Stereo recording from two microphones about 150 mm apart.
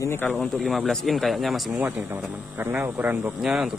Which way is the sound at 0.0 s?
15° left (ahead or behind).